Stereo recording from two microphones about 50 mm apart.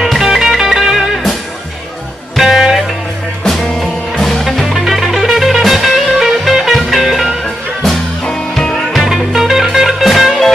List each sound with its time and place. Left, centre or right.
0.0 s music: centre
2.3 s music: centre
3.4 s music: centre
8.3 s music: centre
9.0 s music: centre